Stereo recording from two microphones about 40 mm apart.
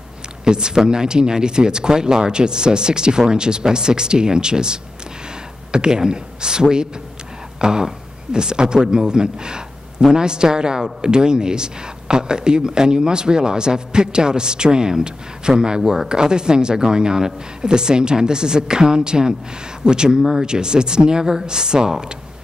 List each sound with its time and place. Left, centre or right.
0.5 s speech: centre